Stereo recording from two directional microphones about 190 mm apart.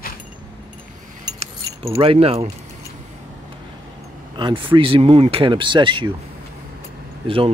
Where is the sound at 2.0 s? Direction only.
30° right (ahead or behind).